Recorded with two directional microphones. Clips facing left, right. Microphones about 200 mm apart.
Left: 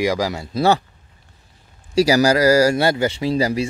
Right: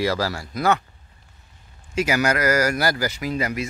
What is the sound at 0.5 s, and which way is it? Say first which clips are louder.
Speech: left 5 dB; 30° left (ahead or behind).